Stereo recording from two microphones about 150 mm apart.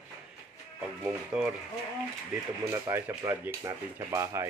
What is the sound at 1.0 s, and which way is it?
Speech, 10° right (ahead or behind).